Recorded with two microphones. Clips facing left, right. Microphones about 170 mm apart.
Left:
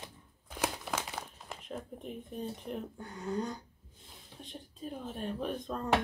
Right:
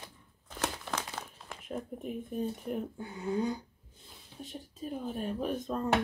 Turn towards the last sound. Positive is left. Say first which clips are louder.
# right 3 dB
turn(degrees=-5)  # may be behind; listen again after turning